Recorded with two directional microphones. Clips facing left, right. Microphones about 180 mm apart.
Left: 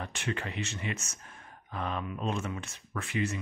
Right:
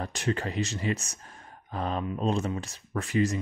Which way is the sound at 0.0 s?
40° right (ahead or behind).